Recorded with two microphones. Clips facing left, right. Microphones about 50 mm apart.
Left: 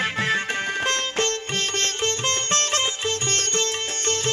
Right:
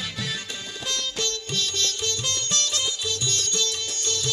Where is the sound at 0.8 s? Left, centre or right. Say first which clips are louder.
Left 2 dB; left.